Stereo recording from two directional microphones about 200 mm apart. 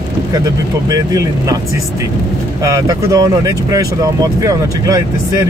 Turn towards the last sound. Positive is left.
turn(degrees=-15)  # may be behind; listen again after turning